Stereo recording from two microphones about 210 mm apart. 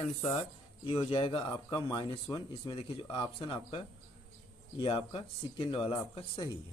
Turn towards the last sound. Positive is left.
turn(degrees=25)  # may be behind; listen again after turning